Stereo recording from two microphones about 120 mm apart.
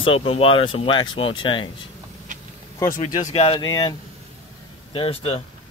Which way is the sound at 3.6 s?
30° left (ahead or behind).